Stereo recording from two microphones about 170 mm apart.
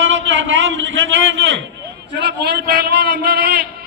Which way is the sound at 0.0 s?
90° right.